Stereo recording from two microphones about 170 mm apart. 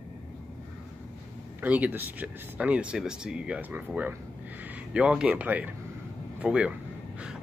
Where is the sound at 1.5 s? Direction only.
10° right (ahead or behind).